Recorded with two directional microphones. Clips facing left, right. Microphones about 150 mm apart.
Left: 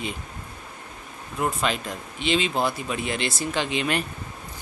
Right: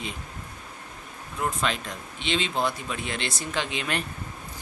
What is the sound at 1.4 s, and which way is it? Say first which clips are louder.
Speech: left 3 dB; 5° left (ahead or behind).